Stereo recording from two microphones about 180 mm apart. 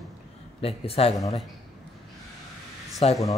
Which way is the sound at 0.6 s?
35° left (ahead or behind).